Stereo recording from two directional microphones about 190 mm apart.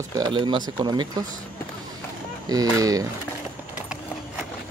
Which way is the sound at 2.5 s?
20° right (ahead or behind).